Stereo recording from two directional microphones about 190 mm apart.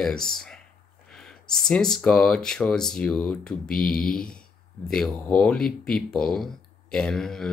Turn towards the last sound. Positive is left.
turn(degrees=5)  # may be behind; listen again after turning